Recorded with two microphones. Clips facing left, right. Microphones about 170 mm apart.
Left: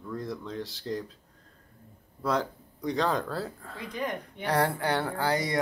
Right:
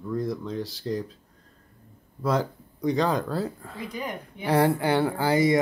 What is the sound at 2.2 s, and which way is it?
Speech, centre (ahead or behind).